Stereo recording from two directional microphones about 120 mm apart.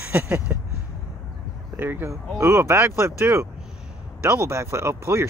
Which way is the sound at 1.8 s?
15° right (ahead or behind).